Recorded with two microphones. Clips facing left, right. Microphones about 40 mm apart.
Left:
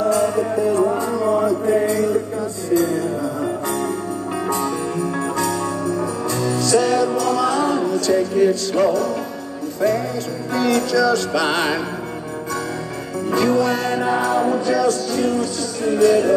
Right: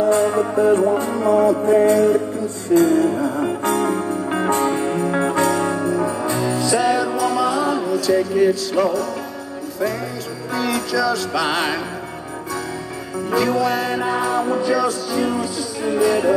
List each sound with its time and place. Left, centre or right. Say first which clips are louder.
0.1 s music: right 1 dB; right; by 9.1 s centre
10.5 s music: left 3 dB; centre
13.3 s music: left 1 dB; centre